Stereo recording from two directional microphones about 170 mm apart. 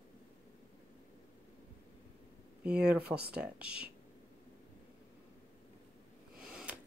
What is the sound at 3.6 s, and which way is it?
Speech, 70° right (ahead or behind).